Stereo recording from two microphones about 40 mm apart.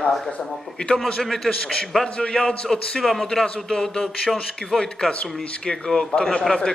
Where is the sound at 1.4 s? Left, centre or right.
Centre.